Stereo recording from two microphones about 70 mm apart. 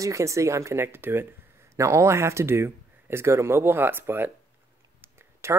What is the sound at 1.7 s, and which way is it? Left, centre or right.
Speech, right.